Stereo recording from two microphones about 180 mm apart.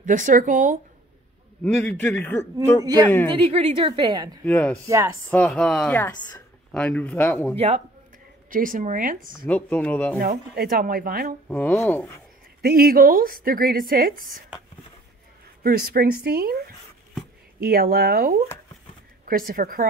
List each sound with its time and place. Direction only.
0.0 s a woman's voice: 45° right (ahead or behind)
1.6 s a man's voice: 10° left (ahead or behind)
2.8 s a woman's voice: 20° right (ahead or behind)
3.3 s a woman's voice: 30° right (ahead or behind)
4.5 s a man's voice: 10° left (ahead or behind)
4.8 s speech: 15° right (ahead or behind)
5.3 s a man's voice: 5° left (ahead or behind)
7.5 s speech: 35° right (ahead or behind)
8.5 s a woman's voice: 50° right (ahead or behind)
9.5 s a man's voice: 5° left (ahead or behind)
10.2 s a woman's voice: 55° right (ahead or behind)
11.4 s a man's voice: 10° left (ahead or behind)
12.6 s a woman's voice: 55° right (ahead or behind)
15.6 s a woman's voice: 55° right (ahead or behind)